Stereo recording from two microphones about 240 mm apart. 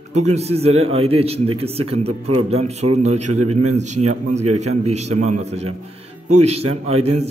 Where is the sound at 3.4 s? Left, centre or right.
Right.